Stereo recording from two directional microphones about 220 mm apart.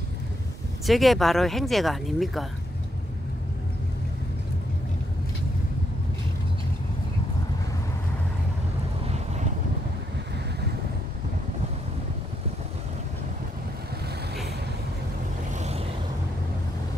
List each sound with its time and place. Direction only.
0.8 s speech: centre (ahead or behind)
9.0 s vehicle: 30° right (ahead or behind)
15.5 s vehicle: 30° right (ahead or behind)